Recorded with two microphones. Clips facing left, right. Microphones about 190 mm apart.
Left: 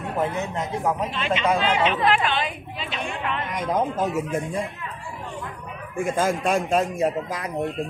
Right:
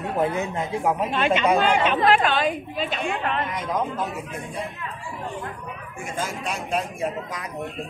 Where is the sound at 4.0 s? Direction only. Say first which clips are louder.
Left 6 dB; 45° left (ahead or behind).